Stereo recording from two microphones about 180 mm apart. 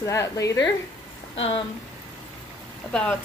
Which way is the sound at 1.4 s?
30° left (ahead or behind).